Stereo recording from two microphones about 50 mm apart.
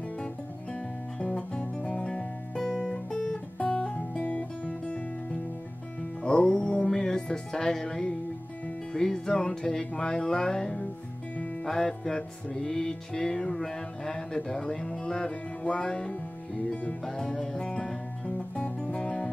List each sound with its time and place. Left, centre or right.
1.2 s music: centre
3.1 s guitar: centre
6.2 s music: centre